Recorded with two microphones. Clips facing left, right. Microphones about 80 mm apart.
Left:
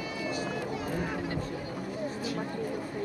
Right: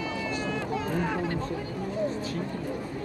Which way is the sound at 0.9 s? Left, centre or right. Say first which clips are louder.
Right 4 dB; right.